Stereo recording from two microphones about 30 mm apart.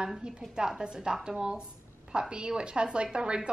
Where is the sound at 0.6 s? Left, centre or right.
Centre.